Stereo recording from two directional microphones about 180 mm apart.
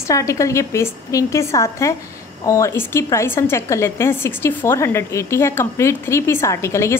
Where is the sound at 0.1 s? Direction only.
15° left (ahead or behind).